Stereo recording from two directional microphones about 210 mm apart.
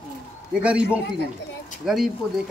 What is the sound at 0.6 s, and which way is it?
Speech, 5° right (ahead or behind).